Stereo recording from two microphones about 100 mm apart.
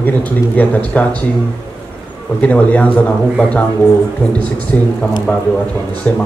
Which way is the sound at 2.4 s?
15° left (ahead or behind).